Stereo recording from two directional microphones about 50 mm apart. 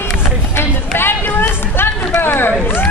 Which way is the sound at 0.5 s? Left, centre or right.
Left.